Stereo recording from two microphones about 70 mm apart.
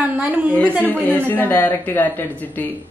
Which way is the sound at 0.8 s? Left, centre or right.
Left.